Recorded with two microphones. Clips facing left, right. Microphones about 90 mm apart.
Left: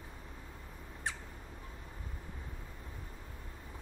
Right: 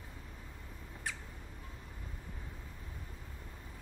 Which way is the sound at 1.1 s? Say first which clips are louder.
Left 2 dB; 30° left (ahead or behind).